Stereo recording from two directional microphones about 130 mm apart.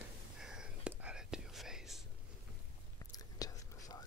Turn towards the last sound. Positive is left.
turn(degrees=30)  # may be behind; listen again after turning